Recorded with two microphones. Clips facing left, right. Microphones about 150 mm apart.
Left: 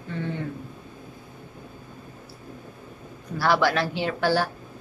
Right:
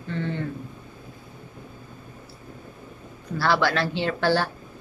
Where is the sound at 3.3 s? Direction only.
15° left (ahead or behind).